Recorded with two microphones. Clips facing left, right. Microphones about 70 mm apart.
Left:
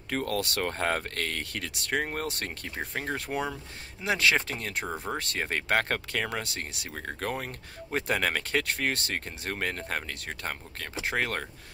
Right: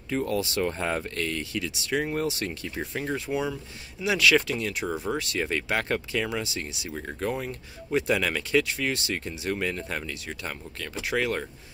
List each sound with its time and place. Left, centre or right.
0.1 s speech: left
4.0 s speech: left